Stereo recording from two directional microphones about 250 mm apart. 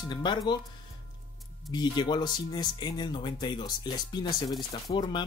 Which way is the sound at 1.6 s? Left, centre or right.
Centre.